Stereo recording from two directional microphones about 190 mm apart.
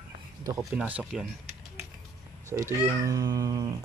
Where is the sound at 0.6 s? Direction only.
Centre (ahead or behind).